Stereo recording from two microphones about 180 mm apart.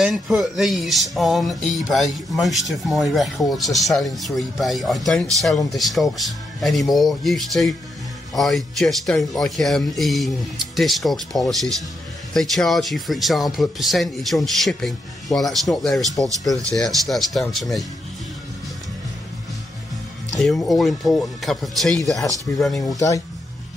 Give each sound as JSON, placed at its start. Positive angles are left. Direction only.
{"t": 0.0, "sound": "speech", "side_deg": 0}
{"t": 20.3, "sound": "speech", "side_deg": 0}
{"t": 22.8, "sound": "speech", "side_deg": 20}